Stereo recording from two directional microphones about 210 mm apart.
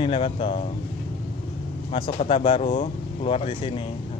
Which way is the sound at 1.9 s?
25° left (ahead or behind).